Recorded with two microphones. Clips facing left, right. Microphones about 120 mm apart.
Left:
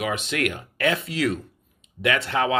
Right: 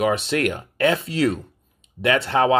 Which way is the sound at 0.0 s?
35° right (ahead or behind).